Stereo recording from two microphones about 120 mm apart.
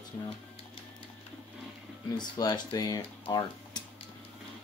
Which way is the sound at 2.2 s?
35° left (ahead or behind).